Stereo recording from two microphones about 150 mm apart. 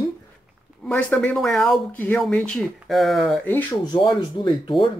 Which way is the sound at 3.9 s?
30° left (ahead or behind).